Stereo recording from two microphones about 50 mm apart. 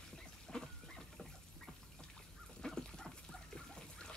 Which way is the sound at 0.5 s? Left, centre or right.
Centre.